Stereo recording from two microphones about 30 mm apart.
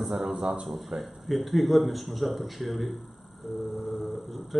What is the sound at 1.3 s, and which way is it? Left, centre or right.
A man's voice, centre.